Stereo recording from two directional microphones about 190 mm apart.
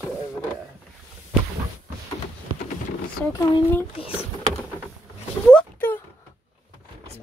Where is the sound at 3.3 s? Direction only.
15° left (ahead or behind).